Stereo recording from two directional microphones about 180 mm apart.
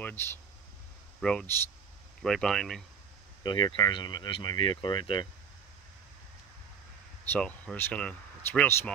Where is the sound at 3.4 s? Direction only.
25° left (ahead or behind).